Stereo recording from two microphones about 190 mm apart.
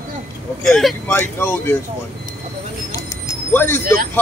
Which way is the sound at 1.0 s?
10° left (ahead or behind).